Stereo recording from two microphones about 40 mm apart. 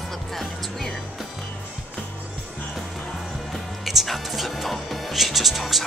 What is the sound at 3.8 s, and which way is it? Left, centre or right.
Speech, centre.